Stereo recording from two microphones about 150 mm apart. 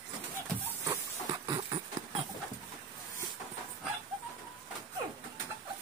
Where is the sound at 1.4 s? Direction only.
25° right (ahead or behind).